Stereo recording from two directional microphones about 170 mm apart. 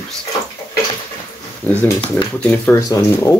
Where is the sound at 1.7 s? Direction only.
10° left (ahead or behind).